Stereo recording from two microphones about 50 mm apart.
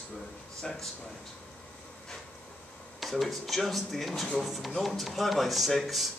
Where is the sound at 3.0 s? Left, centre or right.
Centre.